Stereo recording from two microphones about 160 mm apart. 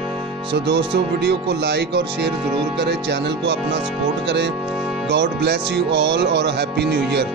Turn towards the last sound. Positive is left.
turn(degrees=-90)